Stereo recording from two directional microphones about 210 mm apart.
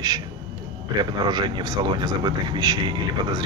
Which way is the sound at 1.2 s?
20° right (ahead or behind).